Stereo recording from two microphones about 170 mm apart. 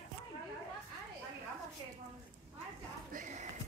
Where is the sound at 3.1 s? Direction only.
45° right (ahead or behind).